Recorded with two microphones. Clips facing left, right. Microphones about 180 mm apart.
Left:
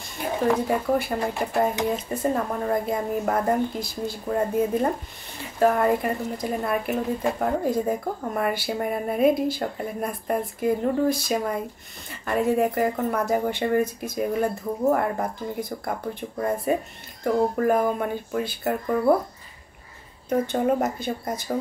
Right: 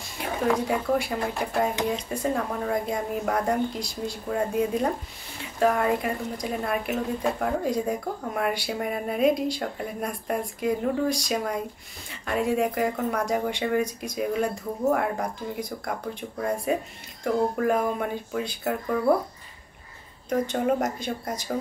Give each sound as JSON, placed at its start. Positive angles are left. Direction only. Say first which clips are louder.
{"t": 0.5, "sound": "speech", "louder": "left 1 dB", "side_deg": 0}
{"t": 20.2, "sound": "speech", "louder": "left 2 dB", "side_deg": 0}